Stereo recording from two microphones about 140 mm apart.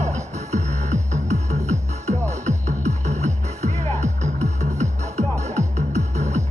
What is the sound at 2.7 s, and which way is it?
Music, 55° right (ahead or behind).